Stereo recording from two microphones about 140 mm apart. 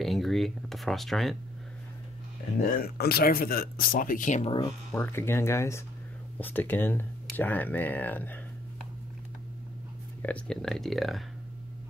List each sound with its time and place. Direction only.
0.0 s a sound: centre (ahead or behind)
2.6 s speech: 90° left; by 4.5 s 65° left (ahead or behind)
4.5 s speech: 30° left (ahead or behind)
4.9 s speech: 20° left (ahead or behind)
10.2 s speech: 5° left (ahead or behind)